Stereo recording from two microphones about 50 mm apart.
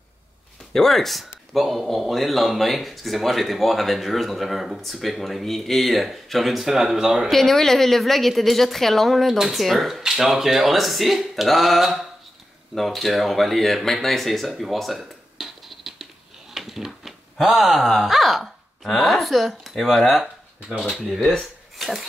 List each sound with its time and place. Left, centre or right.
0.7 s a man's voice: centre
7.2 s a man's voice: centre
14.5 s a sound: centre
16.5 s speech: centre